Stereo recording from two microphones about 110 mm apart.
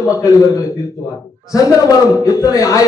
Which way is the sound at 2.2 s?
30° left (ahead or behind).